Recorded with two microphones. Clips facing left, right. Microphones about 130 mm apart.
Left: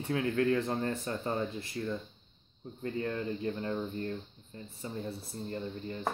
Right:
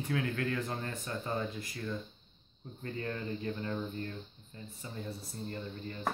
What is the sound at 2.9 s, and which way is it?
Speech, 25° left (ahead or behind).